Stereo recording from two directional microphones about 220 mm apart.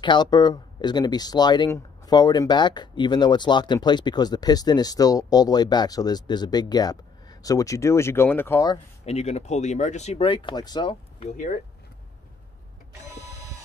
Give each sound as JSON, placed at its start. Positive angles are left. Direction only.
{"t": 0.0, "sound": "speech", "side_deg": 20}
{"t": 9.0, "sound": "speech", "side_deg": 30}